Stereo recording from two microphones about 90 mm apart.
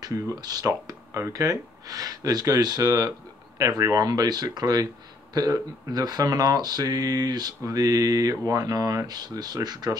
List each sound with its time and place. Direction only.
0.0 s speech: 45° right (ahead or behind)